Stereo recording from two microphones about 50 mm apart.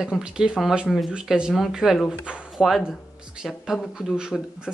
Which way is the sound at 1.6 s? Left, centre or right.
Centre.